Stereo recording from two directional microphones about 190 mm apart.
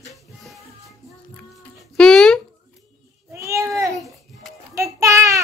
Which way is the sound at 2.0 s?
5° left (ahead or behind).